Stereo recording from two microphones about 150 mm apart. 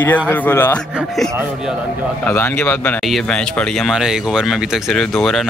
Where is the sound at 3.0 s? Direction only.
5° left (ahead or behind).